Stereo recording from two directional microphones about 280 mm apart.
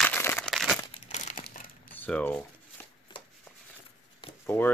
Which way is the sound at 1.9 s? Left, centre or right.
Centre.